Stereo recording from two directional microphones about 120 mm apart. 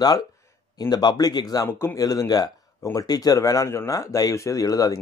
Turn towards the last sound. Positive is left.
turn(degrees=30)  # may be behind; listen again after turning